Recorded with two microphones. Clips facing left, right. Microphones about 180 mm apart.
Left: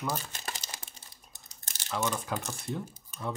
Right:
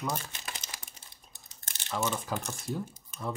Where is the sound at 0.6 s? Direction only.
30° left (ahead or behind).